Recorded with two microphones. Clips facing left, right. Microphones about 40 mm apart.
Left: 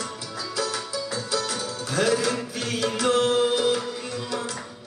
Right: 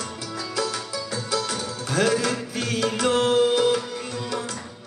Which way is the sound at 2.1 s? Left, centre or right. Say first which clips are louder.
Even; centre.